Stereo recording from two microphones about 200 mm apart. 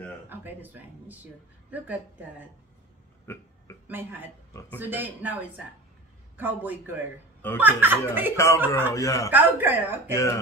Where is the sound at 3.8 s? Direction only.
10° right (ahead or behind).